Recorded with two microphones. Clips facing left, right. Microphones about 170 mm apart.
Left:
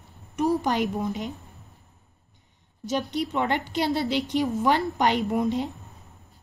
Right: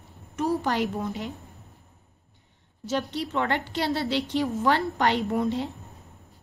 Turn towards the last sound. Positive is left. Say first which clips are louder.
# left 1 dB
turn(degrees=15)  # may be behind; listen again after turning